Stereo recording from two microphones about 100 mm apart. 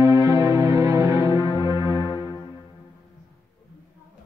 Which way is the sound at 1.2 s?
50° left (ahead or behind).